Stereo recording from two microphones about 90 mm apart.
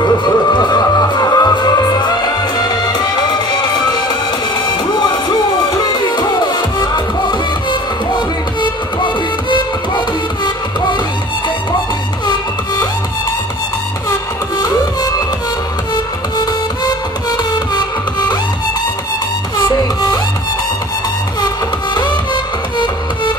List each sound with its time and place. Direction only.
0.5 s music: 50° left (ahead or behind)
4.6 s music: 50° left (ahead or behind)
9.0 s music: 55° left (ahead or behind)
19.7 s music: 45° left (ahead or behind)
21.9 s music: 55° left (ahead or behind)